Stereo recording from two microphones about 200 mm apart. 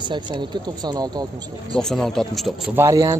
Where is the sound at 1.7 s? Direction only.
Centre (ahead or behind).